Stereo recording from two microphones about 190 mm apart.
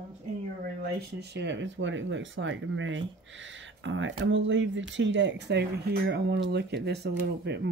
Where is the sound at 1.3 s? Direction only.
65° right (ahead or behind).